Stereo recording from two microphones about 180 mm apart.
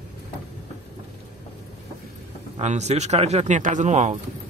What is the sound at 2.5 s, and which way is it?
Speech, 40° right (ahead or behind).